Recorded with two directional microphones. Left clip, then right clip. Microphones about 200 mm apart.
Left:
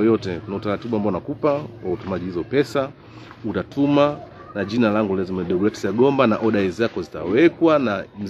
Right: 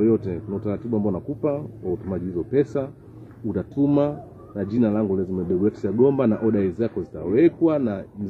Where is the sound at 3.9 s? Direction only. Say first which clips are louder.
Left 6 dB; 10° left (ahead or behind).